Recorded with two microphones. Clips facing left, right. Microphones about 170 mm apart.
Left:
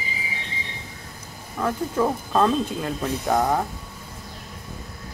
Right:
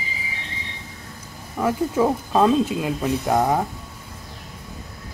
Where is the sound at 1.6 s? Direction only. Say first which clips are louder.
Right 3 dB; 10° right (ahead or behind).